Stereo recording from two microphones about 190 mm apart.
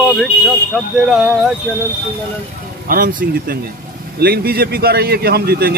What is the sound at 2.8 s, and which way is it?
Speech, 50° right (ahead or behind).